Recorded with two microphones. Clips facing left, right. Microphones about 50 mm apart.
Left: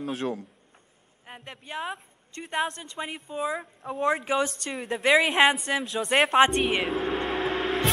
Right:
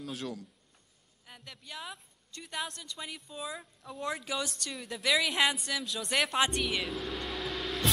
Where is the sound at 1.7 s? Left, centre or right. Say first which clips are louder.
Left 10 dB; left.